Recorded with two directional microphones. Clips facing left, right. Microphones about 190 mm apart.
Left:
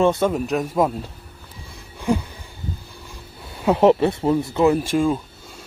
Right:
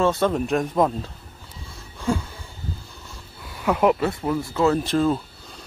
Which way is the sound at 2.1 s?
15° left (ahead or behind).